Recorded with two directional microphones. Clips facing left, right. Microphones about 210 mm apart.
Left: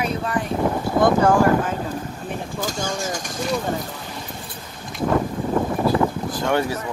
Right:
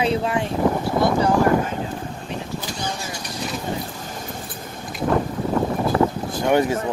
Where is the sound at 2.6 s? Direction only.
45° left (ahead or behind).